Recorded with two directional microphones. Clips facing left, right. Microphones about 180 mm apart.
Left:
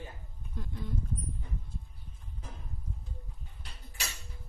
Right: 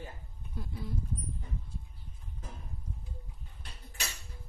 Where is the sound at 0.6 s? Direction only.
5° right (ahead or behind).